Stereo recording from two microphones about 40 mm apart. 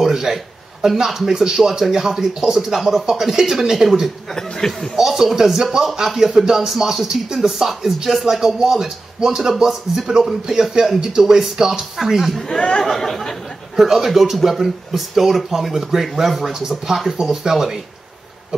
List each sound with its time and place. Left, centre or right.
0.0 s a man's voice: centre
4.3 s speech: centre
4.9 s speech: centre
12.1 s speech: centre
12.4 s speech: centre
12.8 s speech: centre
13.7 s speech: centre